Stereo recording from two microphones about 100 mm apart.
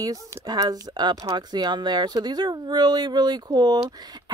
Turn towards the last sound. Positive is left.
turn(degrees=-45)  # may be behind; listen again after turning